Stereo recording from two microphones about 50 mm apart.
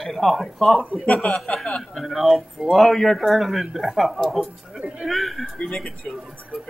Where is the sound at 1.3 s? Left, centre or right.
Centre.